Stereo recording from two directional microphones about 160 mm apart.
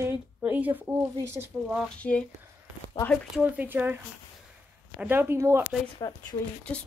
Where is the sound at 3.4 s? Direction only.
10° right (ahead or behind).